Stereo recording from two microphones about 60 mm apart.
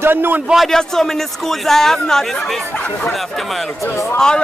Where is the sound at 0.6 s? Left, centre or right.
Centre.